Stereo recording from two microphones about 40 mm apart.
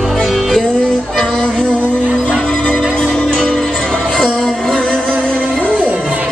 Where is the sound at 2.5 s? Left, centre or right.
Left.